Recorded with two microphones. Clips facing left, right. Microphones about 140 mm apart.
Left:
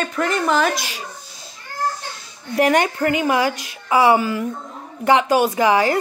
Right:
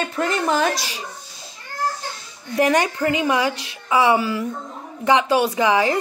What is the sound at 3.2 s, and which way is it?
Speech, 30° left (ahead or behind).